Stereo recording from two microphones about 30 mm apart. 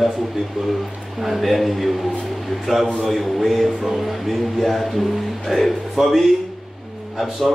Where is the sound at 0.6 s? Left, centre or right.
Centre.